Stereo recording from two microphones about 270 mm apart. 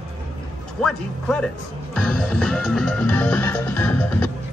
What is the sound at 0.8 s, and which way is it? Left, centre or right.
Speech, centre.